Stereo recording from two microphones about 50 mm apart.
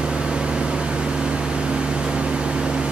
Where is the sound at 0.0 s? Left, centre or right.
Centre.